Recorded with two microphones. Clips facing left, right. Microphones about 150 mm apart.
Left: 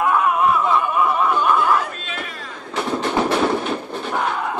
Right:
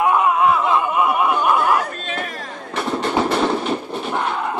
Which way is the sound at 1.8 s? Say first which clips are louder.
Right 2 dB; 45° right (ahead or behind).